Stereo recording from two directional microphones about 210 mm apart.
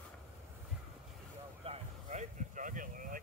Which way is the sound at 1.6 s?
35° right (ahead or behind).